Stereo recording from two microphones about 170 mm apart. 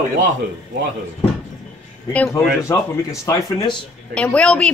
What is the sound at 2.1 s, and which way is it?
Speech, 10° left (ahead or behind).